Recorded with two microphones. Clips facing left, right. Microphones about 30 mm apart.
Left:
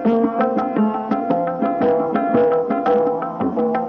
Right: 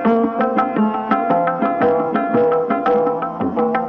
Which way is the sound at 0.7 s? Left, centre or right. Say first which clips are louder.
Right 1 dB; right.